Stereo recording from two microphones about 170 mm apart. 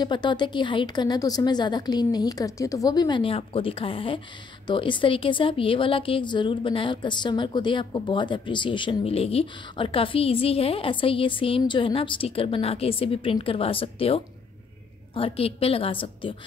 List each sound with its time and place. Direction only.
0.0 s a woman's voice: 25° left (ahead or behind)